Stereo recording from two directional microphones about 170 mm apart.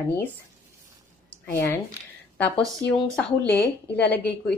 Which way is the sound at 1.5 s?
15° left (ahead or behind).